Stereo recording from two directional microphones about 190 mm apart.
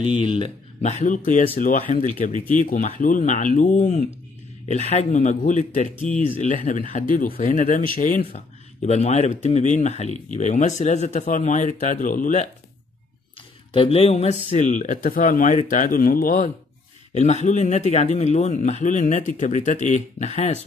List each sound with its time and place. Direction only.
0.4 s speech: 40° left (ahead or behind)
5.9 s speech: 5° left (ahead or behind)
6.4 s speech: 40° left (ahead or behind)
8.8 s speech: 35° left (ahead or behind)
13.7 s speech: 30° left (ahead or behind)